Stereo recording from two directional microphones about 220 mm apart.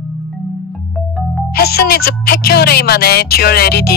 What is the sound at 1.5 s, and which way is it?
Speech, 45° left (ahead or behind).